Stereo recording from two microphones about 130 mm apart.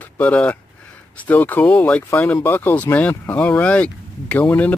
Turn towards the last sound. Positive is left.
turn(degrees=15)  # may be behind; listen again after turning